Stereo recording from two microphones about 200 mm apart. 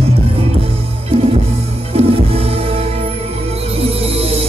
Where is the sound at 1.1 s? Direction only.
30° right (ahead or behind).